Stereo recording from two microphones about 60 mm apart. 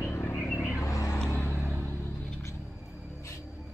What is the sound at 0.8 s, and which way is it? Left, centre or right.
Vehicle, left.